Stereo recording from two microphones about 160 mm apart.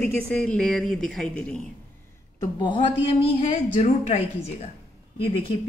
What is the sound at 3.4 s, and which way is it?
Speech, 45° left (ahead or behind).